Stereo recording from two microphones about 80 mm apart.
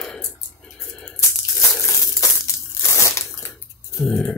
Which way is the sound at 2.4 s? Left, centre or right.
Left.